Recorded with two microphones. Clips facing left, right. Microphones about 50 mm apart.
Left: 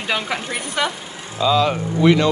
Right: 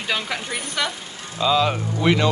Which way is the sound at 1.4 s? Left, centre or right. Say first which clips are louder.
Left 2 dB; centre.